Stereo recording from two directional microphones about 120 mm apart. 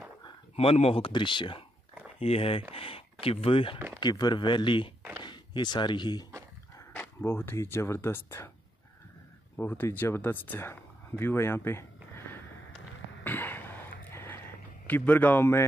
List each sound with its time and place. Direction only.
0.6 s speech: 55° left (ahead or behind)
2.1 s speech: 55° left (ahead or behind)
4.0 s speech: 35° left (ahead or behind)
6.9 s speech: 20° left (ahead or behind)
9.6 s speech: 15° left (ahead or behind)
13.2 s cough: 15° left (ahead or behind)
14.9 s a man's voice: 15° left (ahead or behind)